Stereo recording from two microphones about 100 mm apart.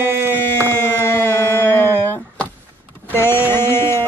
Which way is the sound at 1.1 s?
25° left (ahead or behind).